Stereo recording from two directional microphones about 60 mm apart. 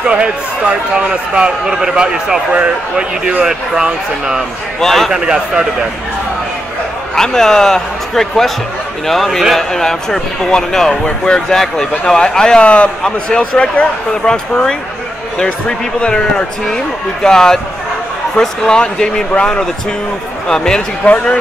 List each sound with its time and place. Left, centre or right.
0.0 s a man's voice: centre
4.7 s speech: centre
5.1 s a man's voice: centre
7.2 s speech: centre
21.0 s speech: left